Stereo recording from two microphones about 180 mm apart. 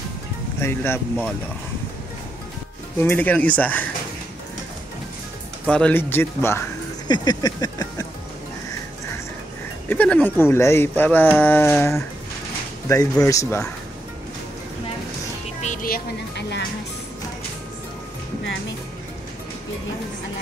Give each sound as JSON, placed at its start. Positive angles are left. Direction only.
{"t": 0.6, "sound": "speech", "side_deg": 15}
{"t": 3.0, "sound": "speech", "side_deg": 10}
{"t": 5.7, "sound": "speech", "side_deg": 5}
{"t": 7.1, "sound": "a sound", "side_deg": 20}
{"t": 9.8, "sound": "speech", "side_deg": 10}
{"t": 15.6, "sound": "music", "side_deg": 45}